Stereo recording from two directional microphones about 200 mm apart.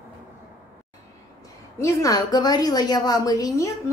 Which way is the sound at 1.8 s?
15° left (ahead or behind).